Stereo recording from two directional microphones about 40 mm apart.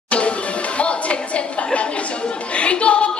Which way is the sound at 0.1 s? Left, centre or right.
Left.